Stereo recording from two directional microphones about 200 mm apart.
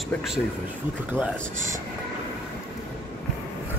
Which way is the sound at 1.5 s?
40° right (ahead or behind).